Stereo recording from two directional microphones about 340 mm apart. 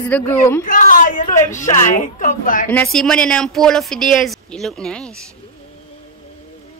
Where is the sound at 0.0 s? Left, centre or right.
Centre.